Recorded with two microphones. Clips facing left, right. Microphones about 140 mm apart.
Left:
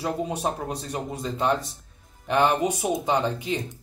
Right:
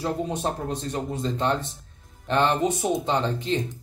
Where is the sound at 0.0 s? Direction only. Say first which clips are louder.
Even; 10° left (ahead or behind).